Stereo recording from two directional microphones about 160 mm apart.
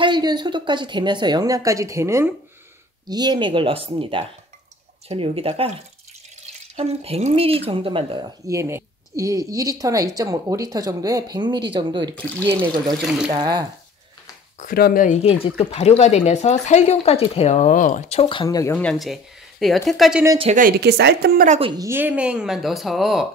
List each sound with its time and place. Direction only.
0.0 s a woman's voice: 25° right (ahead or behind)
6.8 s speech: 40° right (ahead or behind)
8.5 s a woman's voice: 15° right (ahead or behind)
12.2 s speech: 10° left (ahead or behind)
13.3 s a woman's voice: 30° right (ahead or behind)
14.6 s speech: 65° left (ahead or behind)
15.0 s speech: 35° left (ahead or behind); by 18.8 s 20° left (ahead or behind)
18.8 s speech: 5° left (ahead or behind)
20.5 s speech: 75° right (ahead or behind)
21.7 s speech: 15° right (ahead or behind)